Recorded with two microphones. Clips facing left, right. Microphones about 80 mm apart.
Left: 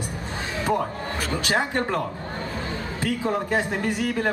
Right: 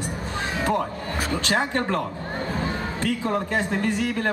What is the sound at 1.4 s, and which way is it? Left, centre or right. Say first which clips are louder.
A man's voice: left 1 dB; centre.